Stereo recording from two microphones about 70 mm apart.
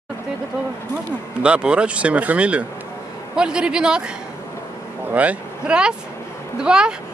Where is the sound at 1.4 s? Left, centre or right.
Centre.